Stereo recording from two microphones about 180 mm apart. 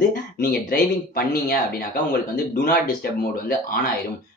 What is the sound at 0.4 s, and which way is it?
Speech, 55° left (ahead or behind).